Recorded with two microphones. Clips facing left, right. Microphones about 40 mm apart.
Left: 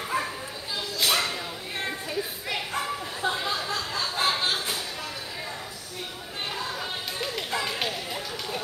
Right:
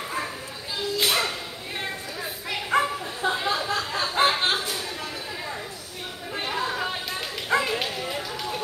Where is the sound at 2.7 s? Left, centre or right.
Right.